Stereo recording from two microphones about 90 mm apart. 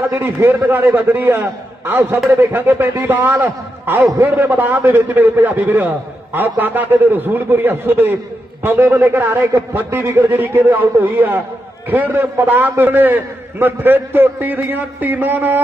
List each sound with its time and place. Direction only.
0.1 s a man's voice: 25° right (ahead or behind)